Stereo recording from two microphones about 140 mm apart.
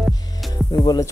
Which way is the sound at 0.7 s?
25° left (ahead or behind).